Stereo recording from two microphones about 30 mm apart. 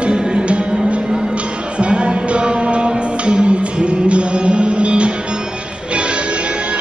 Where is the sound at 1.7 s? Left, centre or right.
Right.